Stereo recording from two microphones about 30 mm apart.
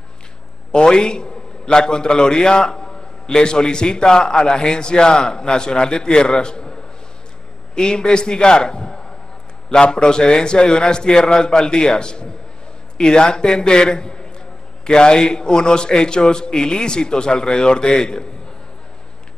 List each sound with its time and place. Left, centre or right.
0.7 s a man's voice: left